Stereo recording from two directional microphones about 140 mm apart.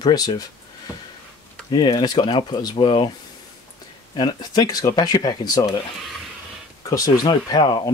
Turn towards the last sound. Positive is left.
turn(degrees=30)  # may be behind; listen again after turning